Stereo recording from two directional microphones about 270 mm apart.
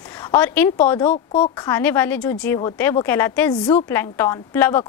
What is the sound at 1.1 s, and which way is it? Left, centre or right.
Speech, centre.